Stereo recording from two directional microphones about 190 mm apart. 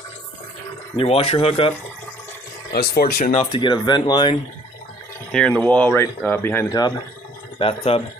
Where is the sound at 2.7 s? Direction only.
55° left (ahead or behind); by 3.4 s 40° left (ahead or behind).